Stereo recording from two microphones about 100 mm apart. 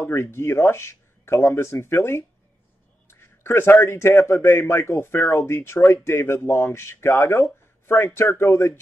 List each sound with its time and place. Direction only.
0.0 s a man's voice: 25° left (ahead or behind)